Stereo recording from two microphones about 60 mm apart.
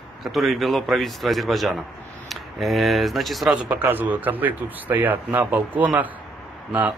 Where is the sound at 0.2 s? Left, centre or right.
Centre.